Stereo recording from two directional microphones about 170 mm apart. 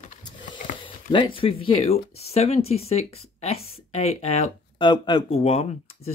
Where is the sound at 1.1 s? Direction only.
30° left (ahead or behind).